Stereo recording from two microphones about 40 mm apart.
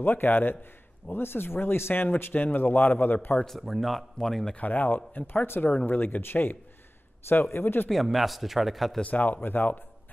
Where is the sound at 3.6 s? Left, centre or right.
Centre.